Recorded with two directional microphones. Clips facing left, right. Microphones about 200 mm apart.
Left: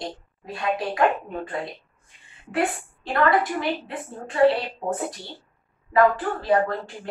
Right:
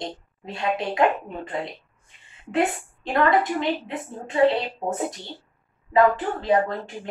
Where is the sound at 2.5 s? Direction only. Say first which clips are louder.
Right 2 dB; 20° right (ahead or behind).